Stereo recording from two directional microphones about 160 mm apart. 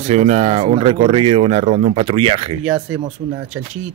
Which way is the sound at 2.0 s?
35° right (ahead or behind).